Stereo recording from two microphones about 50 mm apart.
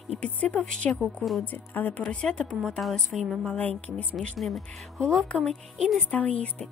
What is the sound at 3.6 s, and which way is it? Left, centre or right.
Speech, left.